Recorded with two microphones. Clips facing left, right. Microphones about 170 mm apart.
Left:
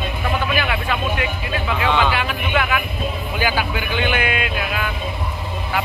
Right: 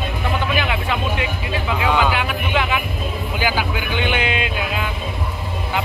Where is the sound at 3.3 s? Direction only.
10° right (ahead or behind).